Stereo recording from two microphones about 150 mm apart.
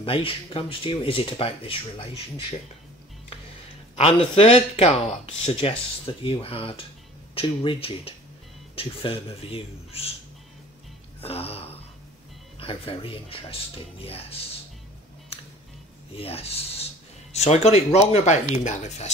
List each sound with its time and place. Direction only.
0.0 s speech: 35° left (ahead or behind)
3.9 s speech: 40° left (ahead or behind)
11.1 s speech: 40° left (ahead or behind)
15.3 s music: 40° left (ahead or behind)
16.2 s speech: 40° left (ahead or behind)